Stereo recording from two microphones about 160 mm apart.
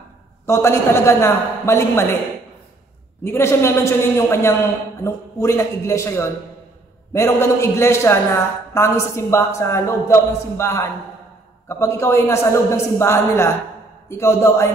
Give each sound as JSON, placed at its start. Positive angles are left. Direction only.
{"t": 0.5, "sound": "a man's voice", "side_deg": 15}
{"t": 3.3, "sound": "a man's voice", "side_deg": 15}